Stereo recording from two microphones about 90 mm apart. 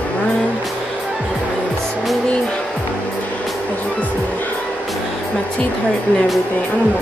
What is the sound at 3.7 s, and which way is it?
Speech, 15° left (ahead or behind).